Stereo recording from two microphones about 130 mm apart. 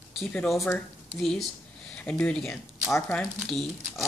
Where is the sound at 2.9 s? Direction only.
15° left (ahead or behind).